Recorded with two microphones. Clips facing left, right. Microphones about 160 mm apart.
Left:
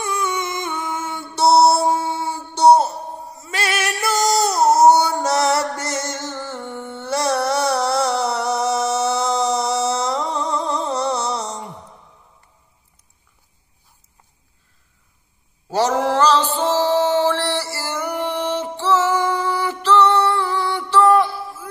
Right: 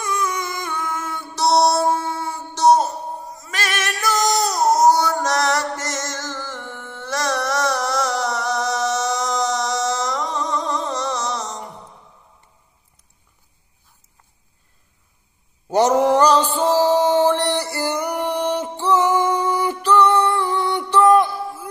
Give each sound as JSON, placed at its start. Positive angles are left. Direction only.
{"t": 0.0, "sound": "music", "side_deg": 25}
{"t": 2.0, "sound": "a sound", "side_deg": 30}
{"t": 3.3, "sound": "singing", "side_deg": 30}
{"t": 15.7, "sound": "mantra", "side_deg": -20}
{"t": 19.2, "sound": "music", "side_deg": -20}